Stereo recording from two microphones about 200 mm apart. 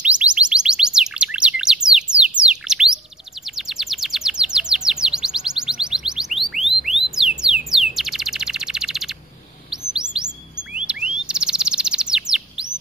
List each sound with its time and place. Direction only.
0.0 s bird: 5° right (ahead or behind)
3.5 s chirp: centre (ahead or behind)
6.5 s chirp tone: centre (ahead or behind)
7.4 s a sound: 5° right (ahead or behind)
7.9 s chirp: centre (ahead or behind)